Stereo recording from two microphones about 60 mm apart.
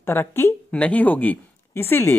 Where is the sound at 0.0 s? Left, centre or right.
Left.